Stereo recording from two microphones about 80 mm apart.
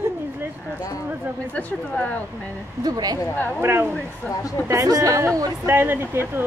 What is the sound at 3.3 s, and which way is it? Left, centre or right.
Speech, left.